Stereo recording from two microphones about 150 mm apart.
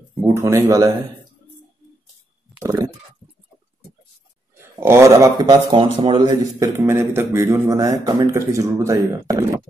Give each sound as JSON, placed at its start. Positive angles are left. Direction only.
{"t": 0.2, "sound": "a man's voice", "side_deg": -15}
{"t": 2.6, "sound": "a man's voice", "side_deg": -20}
{"t": 4.7, "sound": "a man's voice", "side_deg": -15}
{"t": 6.6, "sound": "a man's voice", "side_deg": -15}